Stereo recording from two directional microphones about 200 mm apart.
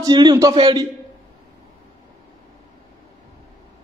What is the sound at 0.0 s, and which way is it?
Speech, 20° right (ahead or behind).